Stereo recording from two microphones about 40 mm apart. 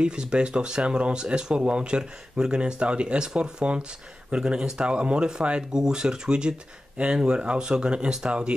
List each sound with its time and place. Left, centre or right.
0.0 s speech: right
4.4 s speech: centre